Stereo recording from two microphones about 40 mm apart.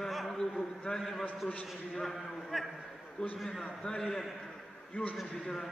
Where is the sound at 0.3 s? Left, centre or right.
Centre.